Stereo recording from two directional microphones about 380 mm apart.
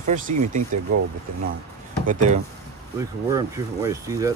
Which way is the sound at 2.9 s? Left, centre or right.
Centre.